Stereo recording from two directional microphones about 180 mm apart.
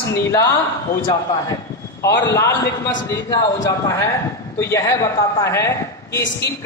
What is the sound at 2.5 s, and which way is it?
Speech, 90° left.